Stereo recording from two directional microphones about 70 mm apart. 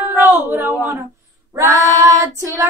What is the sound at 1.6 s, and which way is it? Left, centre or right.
Child singing, right.